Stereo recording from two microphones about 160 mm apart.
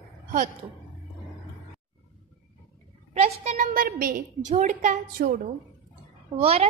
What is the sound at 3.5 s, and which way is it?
A woman's voice, 65° right (ahead or behind).